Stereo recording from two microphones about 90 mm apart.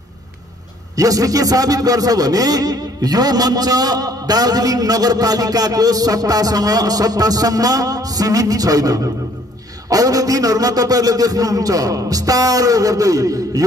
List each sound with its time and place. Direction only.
0.9 s a man's voice: 40° right (ahead or behind)